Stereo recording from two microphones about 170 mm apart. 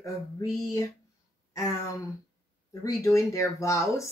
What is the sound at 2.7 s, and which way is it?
Speech, 15° left (ahead or behind).